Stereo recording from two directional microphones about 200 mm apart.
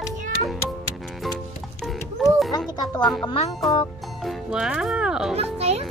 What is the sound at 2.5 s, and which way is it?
Music, 20° left (ahead or behind).